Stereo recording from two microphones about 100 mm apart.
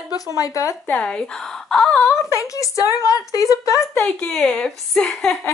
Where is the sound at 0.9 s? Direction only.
15° left (ahead or behind).